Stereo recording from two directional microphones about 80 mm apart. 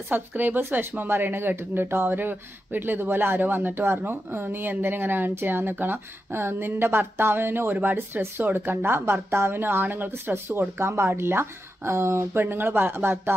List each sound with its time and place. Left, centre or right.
0.1 s speech: right